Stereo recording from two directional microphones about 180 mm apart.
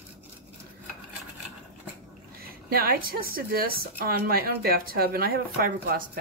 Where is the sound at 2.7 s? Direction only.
55° right (ahead or behind).